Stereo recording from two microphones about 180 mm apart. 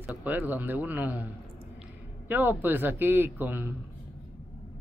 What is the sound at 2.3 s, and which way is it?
Speech, 10° right (ahead or behind).